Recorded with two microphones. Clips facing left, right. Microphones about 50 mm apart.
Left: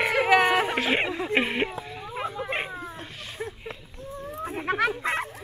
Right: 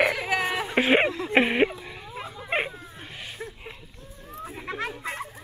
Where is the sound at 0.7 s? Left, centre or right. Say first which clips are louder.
Right 4 dB; centre.